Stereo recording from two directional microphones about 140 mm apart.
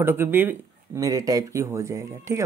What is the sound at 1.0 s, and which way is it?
Speech, 25° right (ahead or behind).